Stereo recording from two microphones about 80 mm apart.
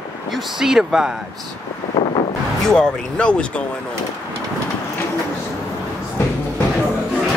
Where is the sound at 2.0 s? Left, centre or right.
Left.